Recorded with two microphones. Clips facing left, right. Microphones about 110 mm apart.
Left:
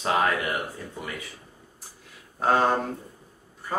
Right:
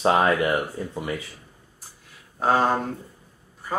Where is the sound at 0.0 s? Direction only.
30° right (ahead or behind).